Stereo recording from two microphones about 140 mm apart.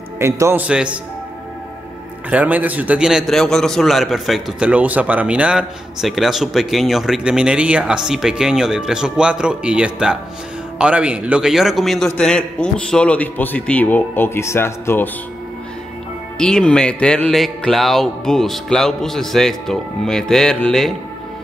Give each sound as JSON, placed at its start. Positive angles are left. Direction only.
{"t": 0.2, "sound": "a man's voice", "side_deg": -20}
{"t": 0.7, "sound": "a man's voice", "side_deg": -5}
{"t": 2.2, "sound": "a man's voice", "side_deg": -10}
{"t": 16.3, "sound": "a man's voice", "side_deg": 5}